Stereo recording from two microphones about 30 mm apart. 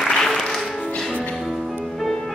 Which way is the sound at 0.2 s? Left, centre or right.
Centre.